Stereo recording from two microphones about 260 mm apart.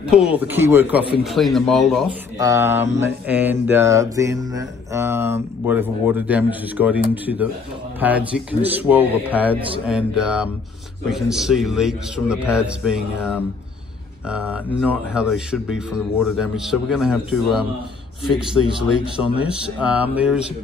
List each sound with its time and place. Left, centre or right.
0.0 s speech: centre
2.3 s speech: centre
14.3 s speech: centre
18.8 s speech: centre
19.3 s speech: centre